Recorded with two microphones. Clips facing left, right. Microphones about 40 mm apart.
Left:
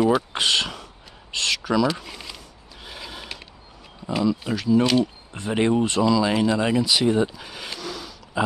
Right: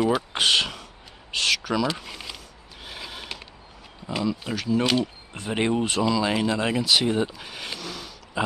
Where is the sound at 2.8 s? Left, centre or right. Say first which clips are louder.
Even; centre.